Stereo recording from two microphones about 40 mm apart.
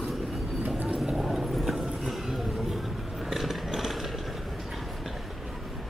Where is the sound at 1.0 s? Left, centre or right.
Centre.